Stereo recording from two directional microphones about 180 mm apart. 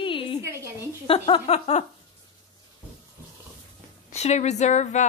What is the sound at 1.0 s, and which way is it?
Speech, 30° left (ahead or behind).